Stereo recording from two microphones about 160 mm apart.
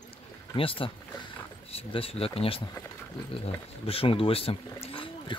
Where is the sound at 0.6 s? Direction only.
35° left (ahead or behind).